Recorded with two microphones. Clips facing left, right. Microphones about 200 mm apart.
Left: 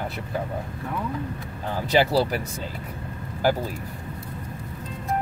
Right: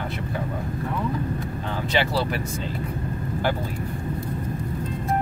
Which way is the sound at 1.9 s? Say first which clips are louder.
Left 4 dB; 40° left (ahead or behind).